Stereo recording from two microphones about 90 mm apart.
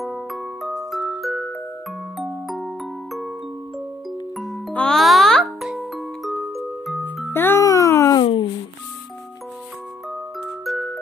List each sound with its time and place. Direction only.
0.0 s glockenspiel: centre (ahead or behind)
4.1 s music: centre (ahead or behind)
4.7 s a child's voice: 10° left (ahead or behind)
5.0 s music: centre (ahead or behind)
7.3 s music: 25° left (ahead or behind)
7.6 s a sound: 35° left (ahead or behind)
8.2 s a sound: 60° left (ahead or behind)
10.6 s glockenspiel: centre (ahead or behind)